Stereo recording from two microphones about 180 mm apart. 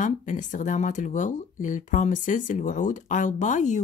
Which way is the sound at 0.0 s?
45° left (ahead or behind).